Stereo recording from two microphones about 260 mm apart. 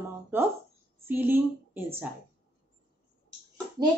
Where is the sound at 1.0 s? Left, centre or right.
Centre.